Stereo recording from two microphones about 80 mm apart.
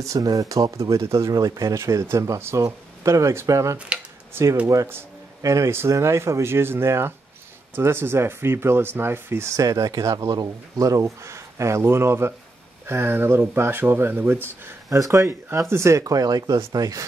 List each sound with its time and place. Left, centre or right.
0.0 s speech: right
14.9 s speech: right